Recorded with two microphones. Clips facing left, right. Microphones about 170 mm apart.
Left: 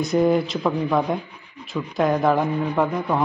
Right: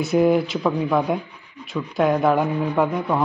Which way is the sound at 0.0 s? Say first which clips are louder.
Right 1 dB; 5° right (ahead or behind).